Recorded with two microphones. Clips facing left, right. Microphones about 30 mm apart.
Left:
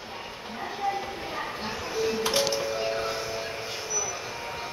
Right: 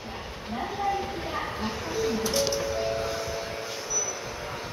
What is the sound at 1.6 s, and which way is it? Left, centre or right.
Music, left.